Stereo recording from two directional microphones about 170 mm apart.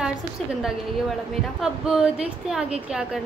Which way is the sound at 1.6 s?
5° right (ahead or behind).